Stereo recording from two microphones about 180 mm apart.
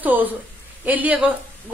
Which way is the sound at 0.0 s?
10° right (ahead or behind).